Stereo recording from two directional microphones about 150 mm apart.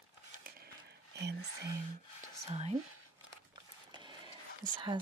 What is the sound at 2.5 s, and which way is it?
Speech, 45° right (ahead or behind).